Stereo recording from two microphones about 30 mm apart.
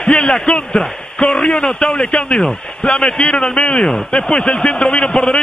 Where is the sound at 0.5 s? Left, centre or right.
Left.